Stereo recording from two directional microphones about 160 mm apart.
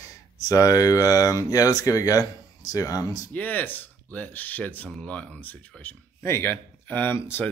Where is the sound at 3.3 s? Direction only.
10° left (ahead or behind).